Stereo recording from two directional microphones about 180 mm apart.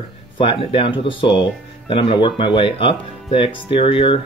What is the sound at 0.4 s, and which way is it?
Speech, 30° left (ahead or behind).